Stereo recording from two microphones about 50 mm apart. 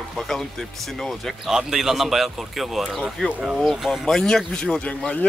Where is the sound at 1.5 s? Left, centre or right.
Centre.